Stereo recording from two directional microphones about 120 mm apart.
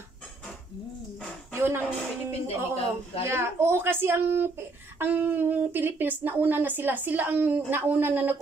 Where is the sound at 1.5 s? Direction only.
20° right (ahead or behind).